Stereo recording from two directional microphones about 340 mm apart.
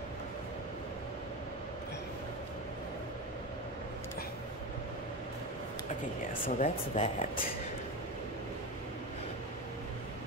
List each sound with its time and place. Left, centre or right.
6.4 s speech: left